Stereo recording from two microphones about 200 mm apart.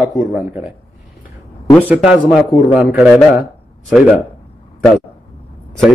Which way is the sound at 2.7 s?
10° right (ahead or behind).